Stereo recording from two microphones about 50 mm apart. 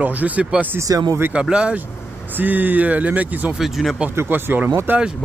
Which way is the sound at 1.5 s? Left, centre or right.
Centre.